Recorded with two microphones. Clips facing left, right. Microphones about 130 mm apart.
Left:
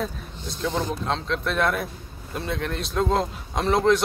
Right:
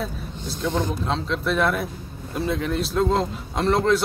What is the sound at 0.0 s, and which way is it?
A man's voice, centre (ahead or behind).